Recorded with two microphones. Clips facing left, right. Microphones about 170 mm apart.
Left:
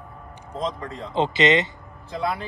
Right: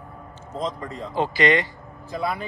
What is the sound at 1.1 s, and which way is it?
Speech, 20° left (ahead or behind).